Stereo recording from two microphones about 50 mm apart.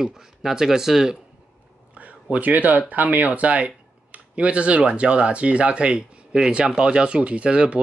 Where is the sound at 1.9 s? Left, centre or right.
Right.